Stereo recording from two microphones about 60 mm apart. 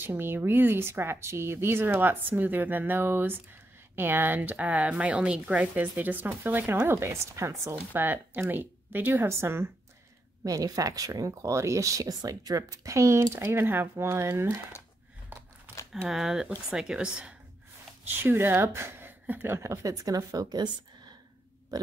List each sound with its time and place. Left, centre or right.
0.0 s speech: right
6.9 s speech: right
7.9 s speech: right
9.1 s speech: right
10.4 s speech: right
13.3 s speech: right
15.7 s a sound: right
16.1 s speech: centre
18.0 s speech: right
19.6 s speech: right